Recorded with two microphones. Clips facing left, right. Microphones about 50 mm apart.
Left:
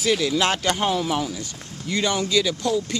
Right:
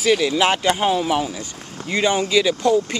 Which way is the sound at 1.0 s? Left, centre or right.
Right.